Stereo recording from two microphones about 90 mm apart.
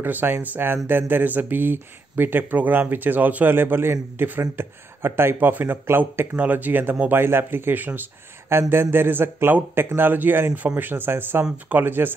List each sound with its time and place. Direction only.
0.0 s speech: 20° right (ahead or behind)